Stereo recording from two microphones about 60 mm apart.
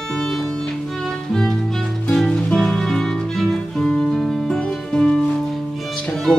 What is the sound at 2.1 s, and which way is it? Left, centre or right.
Music, centre.